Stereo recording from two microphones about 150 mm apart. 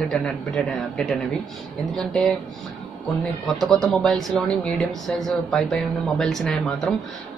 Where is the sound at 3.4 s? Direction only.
Centre (ahead or behind).